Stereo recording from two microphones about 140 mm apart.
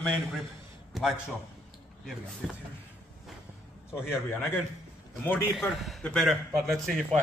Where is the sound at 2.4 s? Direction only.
Centre (ahead or behind).